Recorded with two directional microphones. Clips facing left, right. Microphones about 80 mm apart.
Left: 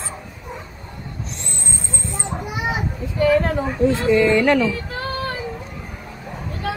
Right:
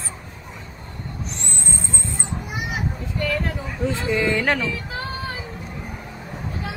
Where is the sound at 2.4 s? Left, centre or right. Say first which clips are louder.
Left 7 dB; left.